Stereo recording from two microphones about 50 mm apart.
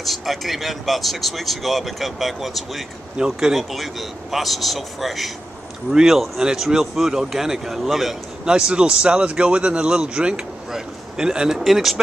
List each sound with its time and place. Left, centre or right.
0.0 s speech: centre
8.5 s a man's voice: centre
11.6 s speech: centre